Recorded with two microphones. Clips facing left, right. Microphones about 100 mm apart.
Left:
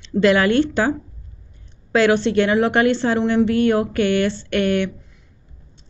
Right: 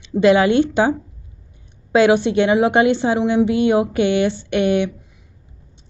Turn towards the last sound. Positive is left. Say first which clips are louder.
# right 2 dB
turn(degrees=-20)  # may be behind; listen again after turning